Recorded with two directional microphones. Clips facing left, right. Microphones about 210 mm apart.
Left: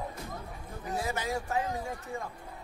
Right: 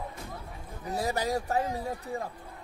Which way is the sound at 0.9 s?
40° right (ahead or behind).